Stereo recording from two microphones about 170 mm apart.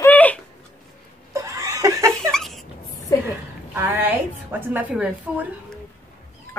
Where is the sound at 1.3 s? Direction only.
20° right (ahead or behind).